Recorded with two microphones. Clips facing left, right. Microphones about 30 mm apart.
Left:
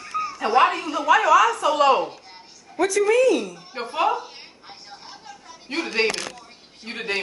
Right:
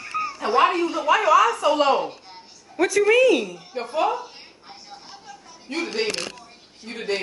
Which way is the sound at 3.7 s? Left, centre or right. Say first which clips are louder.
Right 1 dB; left.